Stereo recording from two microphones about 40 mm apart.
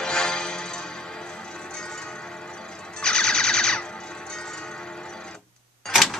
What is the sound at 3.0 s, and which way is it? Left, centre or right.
Music, centre.